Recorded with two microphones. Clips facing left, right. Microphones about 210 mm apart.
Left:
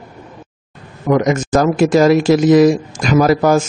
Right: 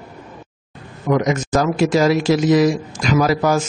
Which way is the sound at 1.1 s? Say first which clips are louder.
Left 4 dB; 50° left (ahead or behind).